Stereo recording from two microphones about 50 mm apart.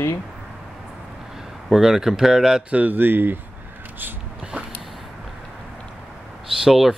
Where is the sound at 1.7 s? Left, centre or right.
Centre.